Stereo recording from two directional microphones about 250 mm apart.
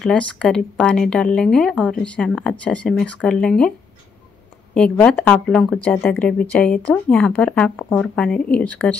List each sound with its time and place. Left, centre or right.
0.0 s speech: centre
4.7 s speech: centre